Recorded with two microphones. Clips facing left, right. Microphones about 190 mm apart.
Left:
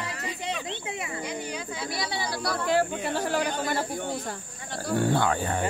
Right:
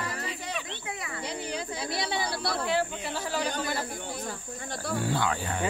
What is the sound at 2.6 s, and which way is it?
Snake, 50° left (ahead or behind).